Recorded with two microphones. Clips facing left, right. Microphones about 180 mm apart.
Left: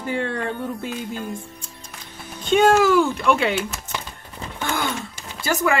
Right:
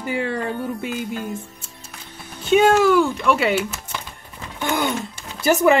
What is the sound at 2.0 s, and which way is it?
Speech, 5° right (ahead or behind).